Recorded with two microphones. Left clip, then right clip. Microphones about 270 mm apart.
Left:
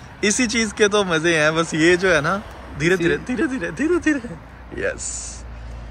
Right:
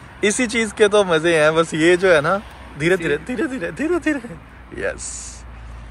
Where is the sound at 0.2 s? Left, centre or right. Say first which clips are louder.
Right 1 dB; centre.